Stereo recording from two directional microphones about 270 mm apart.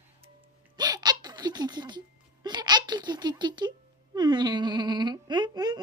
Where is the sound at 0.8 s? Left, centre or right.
Centre.